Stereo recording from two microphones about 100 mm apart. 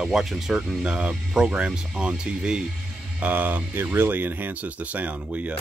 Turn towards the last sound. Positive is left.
turn(degrees=-15)  # may be behind; listen again after turning